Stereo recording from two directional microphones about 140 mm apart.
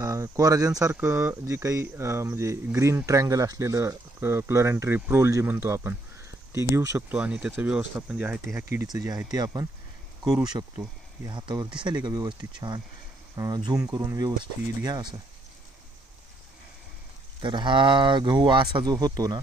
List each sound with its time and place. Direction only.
0.0 s speech: 25° right (ahead or behind)
7.0 s speech: 10° right (ahead or behind)
8.6 s speech: 25° right (ahead or behind)
17.4 s speech: 35° right (ahead or behind)